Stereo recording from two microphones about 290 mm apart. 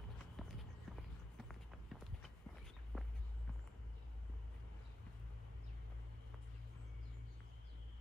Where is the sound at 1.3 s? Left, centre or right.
Centre.